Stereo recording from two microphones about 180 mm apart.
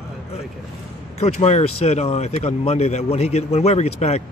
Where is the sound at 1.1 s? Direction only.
35° left (ahead or behind).